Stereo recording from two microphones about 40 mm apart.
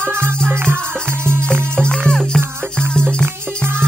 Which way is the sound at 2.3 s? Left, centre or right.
Centre.